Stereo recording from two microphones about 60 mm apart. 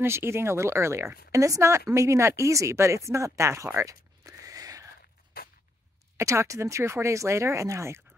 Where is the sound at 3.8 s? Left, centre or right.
Right.